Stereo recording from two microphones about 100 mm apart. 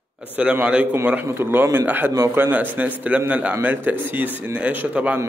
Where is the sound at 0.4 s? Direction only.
10° right (ahead or behind).